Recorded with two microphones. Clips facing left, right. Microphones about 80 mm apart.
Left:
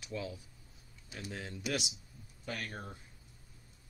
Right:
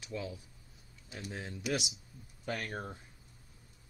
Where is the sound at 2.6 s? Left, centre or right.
Right.